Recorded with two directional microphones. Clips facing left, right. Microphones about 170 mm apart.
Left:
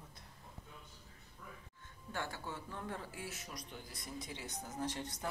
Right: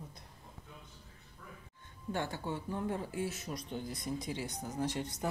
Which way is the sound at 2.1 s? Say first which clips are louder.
Right 6 dB; 20° right (ahead or behind).